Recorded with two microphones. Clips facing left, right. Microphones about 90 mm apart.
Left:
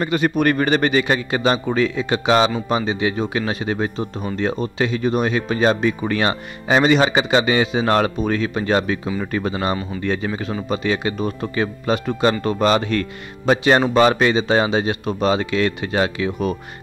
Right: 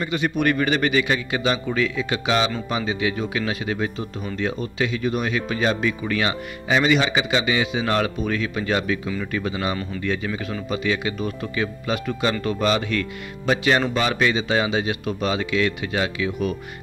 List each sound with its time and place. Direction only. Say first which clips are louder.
0.0 s speech: left 4 dB; 45° left (ahead or behind)